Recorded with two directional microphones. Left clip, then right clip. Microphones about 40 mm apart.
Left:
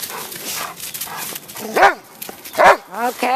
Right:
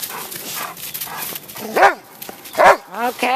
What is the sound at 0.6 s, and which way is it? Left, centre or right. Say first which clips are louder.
Dog: left 1 dB; centre.